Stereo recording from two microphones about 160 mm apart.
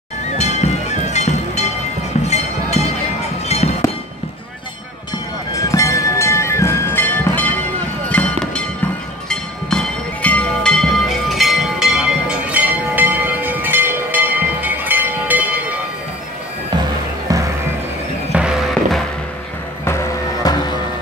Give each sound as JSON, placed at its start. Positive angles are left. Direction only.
{"t": 0.4, "sound": "music", "side_deg": 45}
{"t": 2.2, "sound": "a sound", "side_deg": 45}
{"t": 3.4, "sound": "music", "side_deg": 40}
{"t": 5.5, "sound": "music", "side_deg": 20}
{"t": 17.3, "sound": "music", "side_deg": -20}
{"t": 18.3, "sound": "music", "side_deg": -5}
{"t": 19.8, "sound": "music", "side_deg": 20}